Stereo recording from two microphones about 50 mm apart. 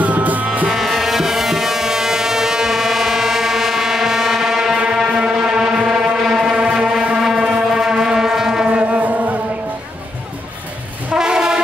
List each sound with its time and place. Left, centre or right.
0.0 s music: right
0.7 s music: centre
4.7 s foghorn: centre
7.2 s a sound: centre
7.7 s foghorn: centre
8.6 s music: right
11.1 s train: centre